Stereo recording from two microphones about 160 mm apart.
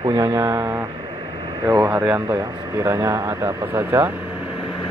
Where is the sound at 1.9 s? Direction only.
10° right (ahead or behind).